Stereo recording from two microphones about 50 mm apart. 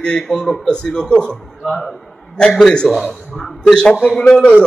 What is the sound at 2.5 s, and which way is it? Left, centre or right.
A man's voice, centre.